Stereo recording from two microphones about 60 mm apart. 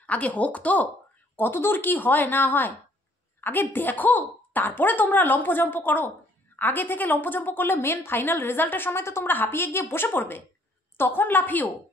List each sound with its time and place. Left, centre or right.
0.0 s speech: left
1.3 s a woman's voice: left